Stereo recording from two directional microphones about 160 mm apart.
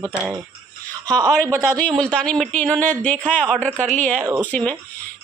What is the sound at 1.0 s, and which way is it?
Speech, 25° right (ahead or behind).